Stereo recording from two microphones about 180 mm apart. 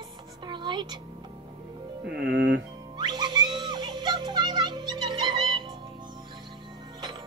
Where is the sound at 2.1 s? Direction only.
75° right (ahead or behind).